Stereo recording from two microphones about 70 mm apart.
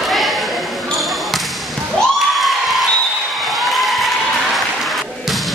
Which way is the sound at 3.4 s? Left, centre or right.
Centre.